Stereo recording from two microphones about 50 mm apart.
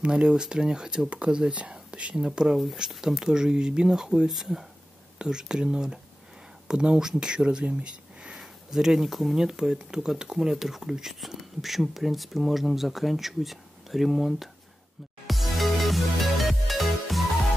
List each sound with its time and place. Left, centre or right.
0.0 s speech: centre
8.4 s speech: centre
15.2 s music: centre